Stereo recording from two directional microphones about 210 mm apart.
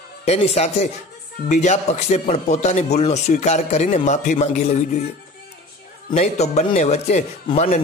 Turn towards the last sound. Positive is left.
turn(degrees=30)  # may be behind; listen again after turning